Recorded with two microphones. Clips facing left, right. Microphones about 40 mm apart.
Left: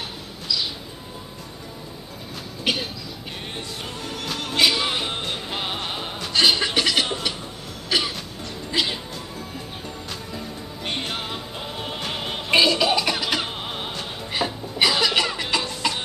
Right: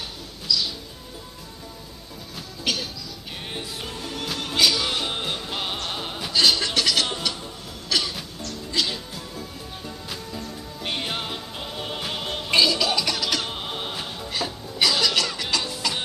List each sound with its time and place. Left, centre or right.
0.5 s a sound: centre
2.6 s speech: left
4.2 s music: centre
4.6 s music: centre
5.1 s music: centre
5.5 s music: centre
6.3 s a sound: centre
7.9 s cough: centre
8.7 s music: left
10.9 s music: centre
12.1 s music: centre
13.5 s music: centre
14.3 s music: centre